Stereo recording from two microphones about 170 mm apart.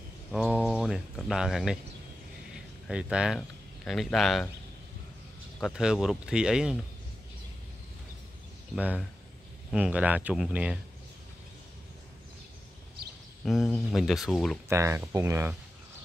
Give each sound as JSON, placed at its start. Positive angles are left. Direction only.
{"t": 0.3, "sound": "a sound", "side_deg": -5}
{"t": 2.9, "sound": "speech", "side_deg": -5}
{"t": 5.6, "sound": "speech", "side_deg": -5}
{"t": 8.7, "sound": "speech", "side_deg": -5}
{"t": 13.5, "sound": "speech", "side_deg": 0}
{"t": 14.7, "sound": "speech", "side_deg": -15}